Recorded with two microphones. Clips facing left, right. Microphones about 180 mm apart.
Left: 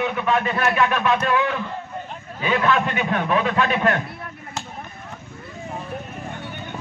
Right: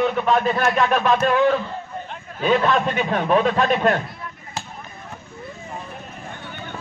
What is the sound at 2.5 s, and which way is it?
A man's voice, 35° right (ahead or behind).